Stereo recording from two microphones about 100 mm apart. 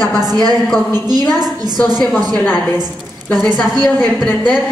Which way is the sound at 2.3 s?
15° left (ahead or behind).